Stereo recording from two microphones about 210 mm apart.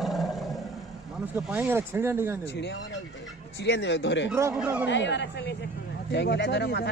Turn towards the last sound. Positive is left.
turn(degrees=55)  # may be behind; listen again after turning